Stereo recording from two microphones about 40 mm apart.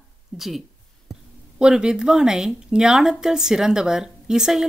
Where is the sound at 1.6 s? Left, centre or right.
Centre.